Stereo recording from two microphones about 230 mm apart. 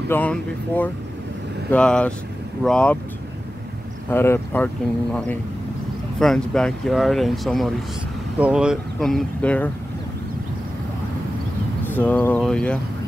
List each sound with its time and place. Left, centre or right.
0.1 s speech: centre
4.1 s speech: centre
11.9 s speech: centre